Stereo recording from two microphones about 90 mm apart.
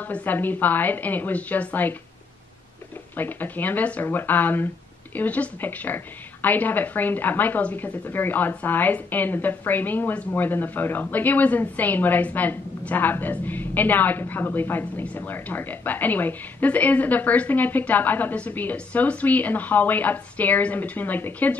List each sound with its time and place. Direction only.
0.1 s a woman's voice: 20° left (ahead or behind)
3.2 s a woman's voice: 20° left (ahead or behind)